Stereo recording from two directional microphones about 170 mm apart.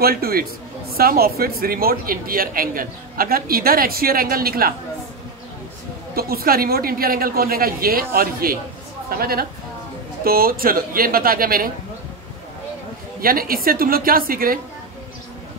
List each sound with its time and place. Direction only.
0.0 s speech: 60° right (ahead or behind)
6.1 s speech: 60° right (ahead or behind)
13.2 s speech: 60° right (ahead or behind)